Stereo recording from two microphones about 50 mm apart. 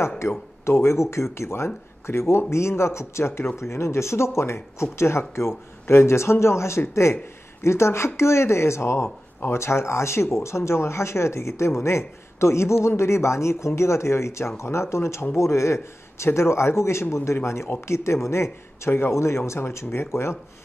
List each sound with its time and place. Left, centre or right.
0.2 s a man's voice: left